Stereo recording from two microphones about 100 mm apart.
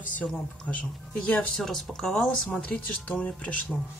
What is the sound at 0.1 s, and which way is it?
Speech, 10° left (ahead or behind).